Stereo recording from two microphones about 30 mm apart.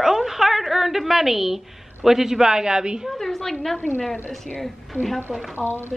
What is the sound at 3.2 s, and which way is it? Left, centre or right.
Speech, centre.